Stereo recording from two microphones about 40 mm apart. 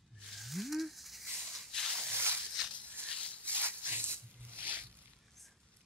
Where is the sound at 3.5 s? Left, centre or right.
Right.